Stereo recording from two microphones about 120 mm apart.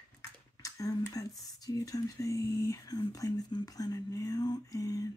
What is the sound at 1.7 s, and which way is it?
Speech, 30° left (ahead or behind).